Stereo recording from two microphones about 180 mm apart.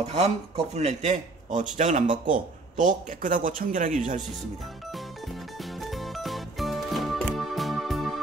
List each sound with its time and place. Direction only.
0.0 s a man's voice: 40° right (ahead or behind)
5.8 s music: centre (ahead or behind)